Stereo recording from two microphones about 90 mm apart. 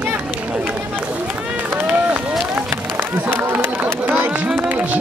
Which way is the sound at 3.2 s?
25° right (ahead or behind).